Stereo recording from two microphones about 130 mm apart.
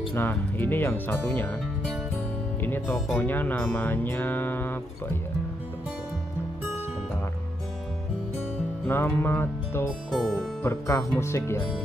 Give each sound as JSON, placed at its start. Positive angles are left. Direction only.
{"t": 0.1, "sound": "speech", "side_deg": 15}
{"t": 2.6, "sound": "speech", "side_deg": 15}
{"t": 8.8, "sound": "music", "side_deg": 15}
{"t": 10.1, "sound": "music", "side_deg": 0}
{"t": 10.6, "sound": "speech", "side_deg": 20}